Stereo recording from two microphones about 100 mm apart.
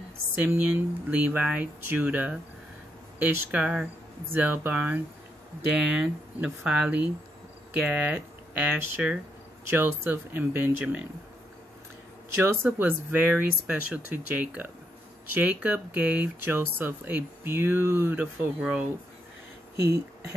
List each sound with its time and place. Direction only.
0.4 s speech: 20° right (ahead or behind)
12.6 s speech: 15° right (ahead or behind)
18.6 s speech: 10° right (ahead or behind)